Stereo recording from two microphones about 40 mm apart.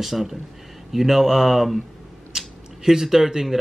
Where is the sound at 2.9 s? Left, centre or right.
Centre.